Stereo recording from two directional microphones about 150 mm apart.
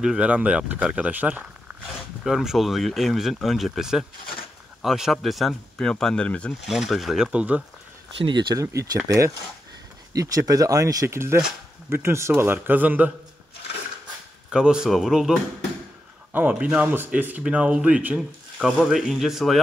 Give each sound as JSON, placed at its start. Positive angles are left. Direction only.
{"t": 0.0, "sound": "speech", "side_deg": -5}
{"t": 6.7, "sound": "speech", "side_deg": 0}
{"t": 8.2, "sound": "speech", "side_deg": -30}
{"t": 14.5, "sound": "speech", "side_deg": -5}
{"t": 16.3, "sound": "speech", "side_deg": -10}